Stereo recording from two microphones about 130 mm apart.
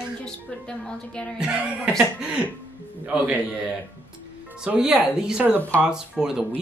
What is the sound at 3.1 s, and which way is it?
A man's voice, 10° right (ahead or behind).